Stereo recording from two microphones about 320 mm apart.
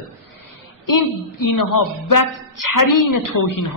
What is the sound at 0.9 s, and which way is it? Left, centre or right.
A woman's voice, left.